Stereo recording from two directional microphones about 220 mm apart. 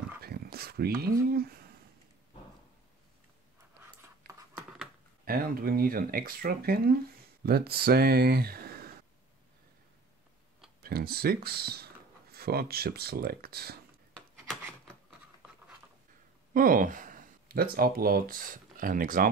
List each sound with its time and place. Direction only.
0.2 s a sound: 45° right (ahead or behind)
1.3 s speech: 45° right (ahead or behind)
5.2 s speech: 40° right (ahead or behind)
10.8 s speech: 45° right (ahead or behind)
16.5 s speech: 40° right (ahead or behind)